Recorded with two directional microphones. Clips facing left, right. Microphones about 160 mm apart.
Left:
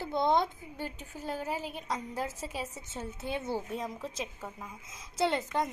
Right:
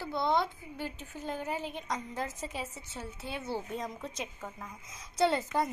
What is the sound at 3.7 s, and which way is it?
A woman's voice, centre (ahead or behind).